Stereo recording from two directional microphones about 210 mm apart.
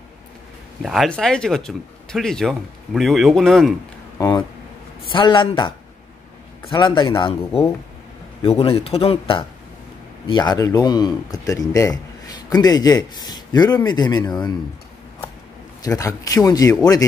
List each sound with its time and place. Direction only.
0.8 s speech: centre (ahead or behind)
4.2 s speech: 15° left (ahead or behind)
15.8 s speech: 15° left (ahead or behind)